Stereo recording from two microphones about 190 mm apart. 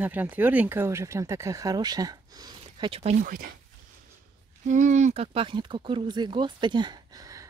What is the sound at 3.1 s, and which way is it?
Speech, 50° right (ahead or behind).